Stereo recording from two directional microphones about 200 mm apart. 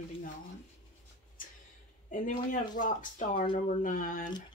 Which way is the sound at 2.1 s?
40° left (ahead or behind).